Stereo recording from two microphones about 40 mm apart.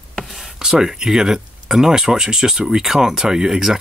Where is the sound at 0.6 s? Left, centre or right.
Centre.